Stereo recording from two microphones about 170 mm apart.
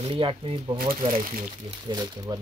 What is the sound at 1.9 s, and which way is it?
Speech, 20° right (ahead or behind).